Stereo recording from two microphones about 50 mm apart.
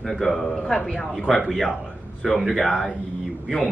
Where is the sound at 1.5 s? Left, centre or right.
Centre.